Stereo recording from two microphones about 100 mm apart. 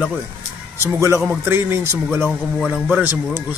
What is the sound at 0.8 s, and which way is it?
A man's voice, 30° right (ahead or behind).